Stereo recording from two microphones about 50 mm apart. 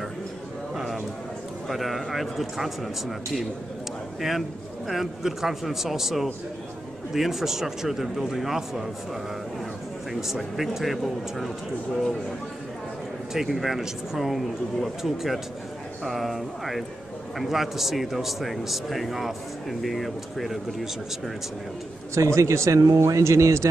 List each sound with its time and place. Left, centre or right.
0.7 s a sound: centre
1.7 s a man's voice: centre
10.2 s a man's voice: centre
13.3 s a man's voice: centre
22.1 s speech: right